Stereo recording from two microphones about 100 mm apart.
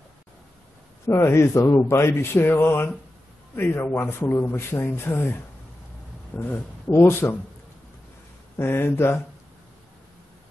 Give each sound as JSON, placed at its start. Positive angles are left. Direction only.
{"t": 1.0, "sound": "speech", "side_deg": 25}
{"t": 8.5, "sound": "speech", "side_deg": 25}